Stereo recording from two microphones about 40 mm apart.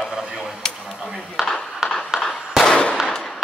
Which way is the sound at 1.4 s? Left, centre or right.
Centre.